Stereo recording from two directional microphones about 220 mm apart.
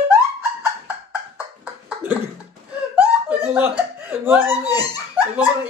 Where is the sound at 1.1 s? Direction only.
5° right (ahead or behind).